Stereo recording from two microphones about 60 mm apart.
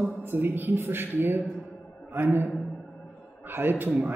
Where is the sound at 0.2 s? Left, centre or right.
Right.